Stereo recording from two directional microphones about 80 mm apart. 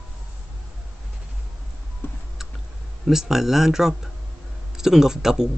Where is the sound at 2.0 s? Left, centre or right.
Left.